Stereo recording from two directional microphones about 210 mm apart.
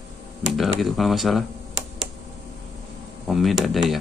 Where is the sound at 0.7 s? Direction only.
Centre (ahead or behind).